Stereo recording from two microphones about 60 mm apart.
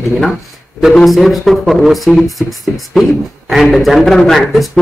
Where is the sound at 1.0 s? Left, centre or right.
Centre.